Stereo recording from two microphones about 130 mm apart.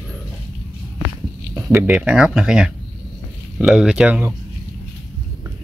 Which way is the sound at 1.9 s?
10° right (ahead or behind).